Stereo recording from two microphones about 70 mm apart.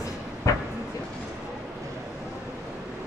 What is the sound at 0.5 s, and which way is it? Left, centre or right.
Vehicle, left.